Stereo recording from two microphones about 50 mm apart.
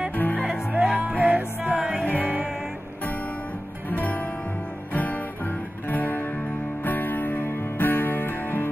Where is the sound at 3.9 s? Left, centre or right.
Left.